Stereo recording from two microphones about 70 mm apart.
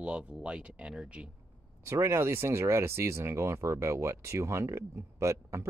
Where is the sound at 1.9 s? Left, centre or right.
Right.